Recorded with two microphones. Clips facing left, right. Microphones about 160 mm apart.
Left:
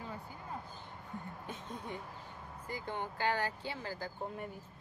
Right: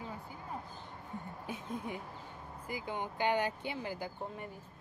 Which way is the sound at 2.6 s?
10° right (ahead or behind).